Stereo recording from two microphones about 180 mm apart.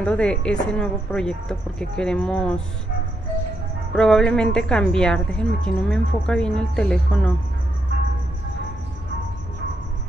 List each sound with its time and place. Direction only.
0.0 s a woman's voice: 5° left (ahead or behind)
3.9 s a woman's voice: 5° left (ahead or behind)